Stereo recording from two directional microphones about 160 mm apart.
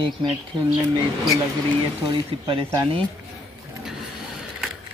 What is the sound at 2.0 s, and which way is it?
Speech, 30° right (ahead or behind).